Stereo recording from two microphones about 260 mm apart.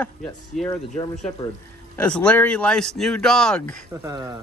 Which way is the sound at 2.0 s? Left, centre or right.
Centre.